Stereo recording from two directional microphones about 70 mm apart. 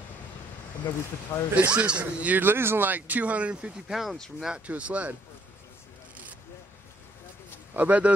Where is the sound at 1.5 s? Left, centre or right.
Centre.